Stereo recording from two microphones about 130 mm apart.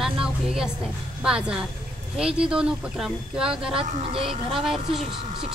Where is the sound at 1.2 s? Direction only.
5° right (ahead or behind).